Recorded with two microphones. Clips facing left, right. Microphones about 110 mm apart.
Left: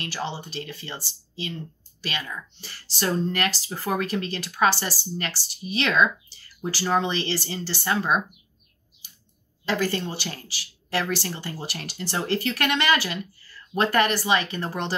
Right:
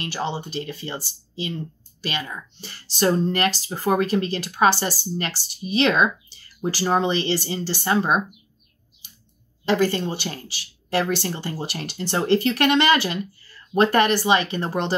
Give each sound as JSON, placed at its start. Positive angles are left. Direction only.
{"t": 0.0, "sound": "speech", "side_deg": -20}
{"t": 2.0, "sound": "speech", "side_deg": -20}
{"t": 9.7, "sound": "speech", "side_deg": -20}